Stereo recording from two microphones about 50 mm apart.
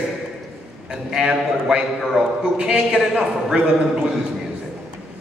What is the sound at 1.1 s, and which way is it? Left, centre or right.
Speech, centre.